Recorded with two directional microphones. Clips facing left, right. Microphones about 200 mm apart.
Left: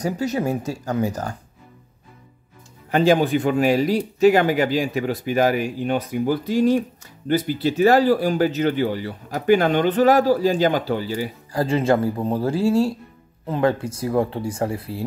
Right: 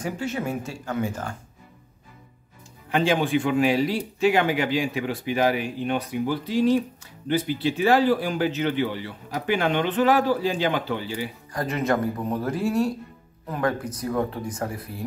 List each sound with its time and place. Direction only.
0.0 s speech: 40° left (ahead or behind)
2.9 s speech: 40° left (ahead or behind)